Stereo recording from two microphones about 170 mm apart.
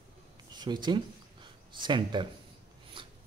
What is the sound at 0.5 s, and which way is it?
Speech, 25° right (ahead or behind).